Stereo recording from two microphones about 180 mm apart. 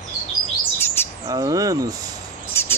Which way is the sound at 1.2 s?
20° right (ahead or behind).